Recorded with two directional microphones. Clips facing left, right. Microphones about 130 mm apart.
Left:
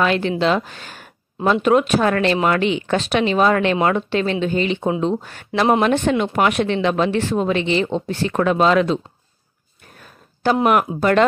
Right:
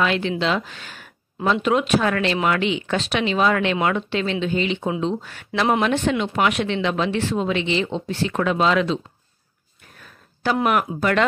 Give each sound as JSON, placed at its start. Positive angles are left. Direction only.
{"t": 0.0, "sound": "speech", "side_deg": 45}
{"t": 10.0, "sound": "a sound", "side_deg": 35}
{"t": 11.0, "sound": "speech", "side_deg": 35}